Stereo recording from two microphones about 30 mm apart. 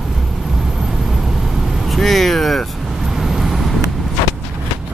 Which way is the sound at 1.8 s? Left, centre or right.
Centre.